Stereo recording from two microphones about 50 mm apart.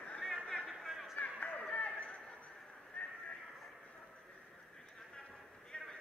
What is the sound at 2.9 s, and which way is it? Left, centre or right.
Horse, left.